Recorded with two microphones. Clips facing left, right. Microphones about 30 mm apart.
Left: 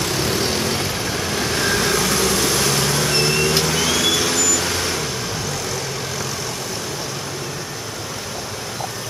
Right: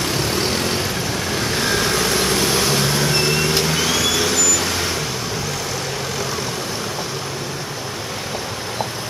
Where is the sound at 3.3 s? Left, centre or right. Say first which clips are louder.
Even; centre.